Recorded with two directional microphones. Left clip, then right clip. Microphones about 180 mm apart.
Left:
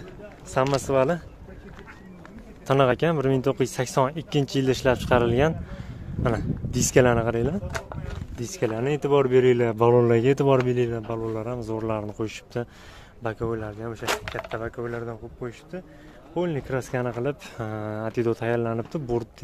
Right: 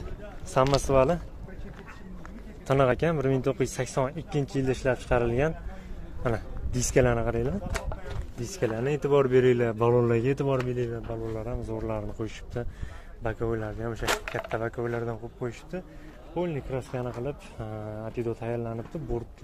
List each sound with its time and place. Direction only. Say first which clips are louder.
0.7 s speech: left 1 dB; 5° left (ahead or behind)
2.6 s speech: left 3 dB; 15° left (ahead or behind)
13.2 s speech: left 2 dB; 15° left (ahead or behind)
13.5 s speech: left 1 dB; centre (ahead or behind)
14.6 s speech: right 1 dB; 20° right (ahead or behind)
16.3 s speech: left 4 dB; 30° left (ahead or behind); by 19.2 s 45° left (ahead or behind)